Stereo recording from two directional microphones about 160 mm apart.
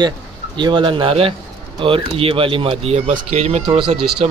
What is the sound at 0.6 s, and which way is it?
Speech, 30° right (ahead or behind).